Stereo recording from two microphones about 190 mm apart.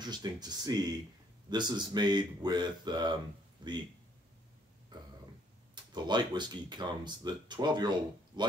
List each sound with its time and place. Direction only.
0.0 s speech: 20° right (ahead or behind)
5.9 s speech: 25° right (ahead or behind)